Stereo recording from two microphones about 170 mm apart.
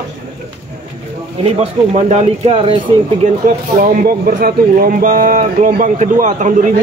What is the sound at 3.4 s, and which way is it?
Speech, 55° right (ahead or behind).